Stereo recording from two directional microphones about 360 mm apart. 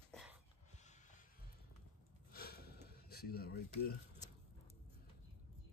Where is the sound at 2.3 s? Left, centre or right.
Left.